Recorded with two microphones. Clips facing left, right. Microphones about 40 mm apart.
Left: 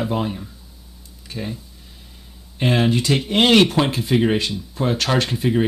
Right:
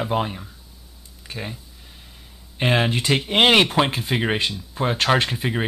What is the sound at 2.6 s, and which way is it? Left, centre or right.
Speech, centre.